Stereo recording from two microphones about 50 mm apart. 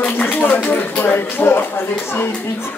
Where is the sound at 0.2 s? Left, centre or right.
Left.